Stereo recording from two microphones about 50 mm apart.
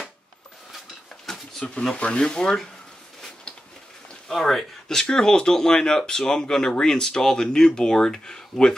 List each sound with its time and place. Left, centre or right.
0.7 s a sound: centre
1.6 s speech: centre
4.3 s speech: centre